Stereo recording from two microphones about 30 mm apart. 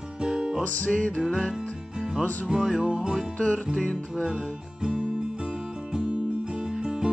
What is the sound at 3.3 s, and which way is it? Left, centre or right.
Music, left.